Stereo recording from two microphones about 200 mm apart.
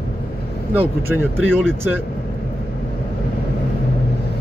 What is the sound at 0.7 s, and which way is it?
Speech, 10° right (ahead or behind).